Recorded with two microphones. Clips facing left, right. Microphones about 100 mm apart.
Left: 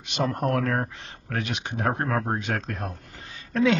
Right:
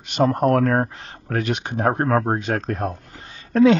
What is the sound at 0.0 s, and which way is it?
Speech, 45° right (ahead or behind).